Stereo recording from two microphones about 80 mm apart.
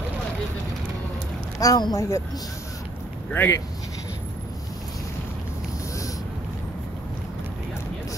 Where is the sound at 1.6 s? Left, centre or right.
Left.